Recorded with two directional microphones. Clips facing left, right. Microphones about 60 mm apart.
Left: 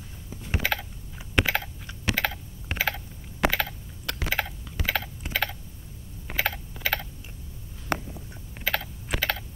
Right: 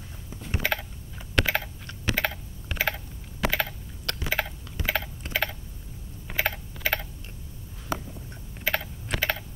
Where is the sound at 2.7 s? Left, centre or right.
Left.